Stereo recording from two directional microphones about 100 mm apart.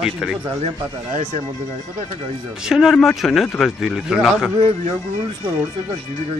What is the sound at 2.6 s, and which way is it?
Speech, 5° right (ahead or behind).